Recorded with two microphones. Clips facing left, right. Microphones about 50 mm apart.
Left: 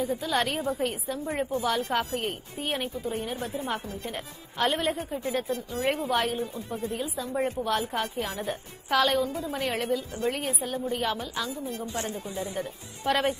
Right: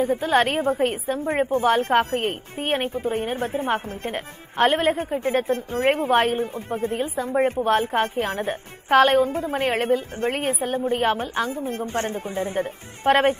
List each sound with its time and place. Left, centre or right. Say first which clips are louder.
0.0 s a woman's voice: right 7 dB; right